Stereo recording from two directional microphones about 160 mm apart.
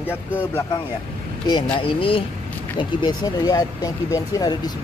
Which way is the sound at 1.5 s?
30° left (ahead or behind).